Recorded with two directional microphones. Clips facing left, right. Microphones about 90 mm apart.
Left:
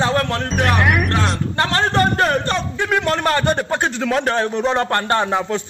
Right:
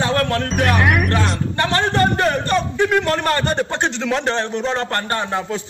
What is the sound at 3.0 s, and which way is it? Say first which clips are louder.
A man's voice: even; 15° left (ahead or behind).